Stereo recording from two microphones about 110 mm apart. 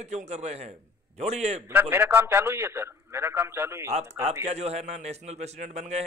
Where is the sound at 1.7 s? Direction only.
15° right (ahead or behind).